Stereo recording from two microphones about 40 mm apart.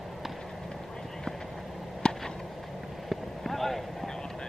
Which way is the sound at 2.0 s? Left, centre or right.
Left.